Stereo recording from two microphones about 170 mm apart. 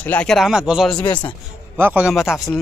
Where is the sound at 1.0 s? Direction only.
30° left (ahead or behind).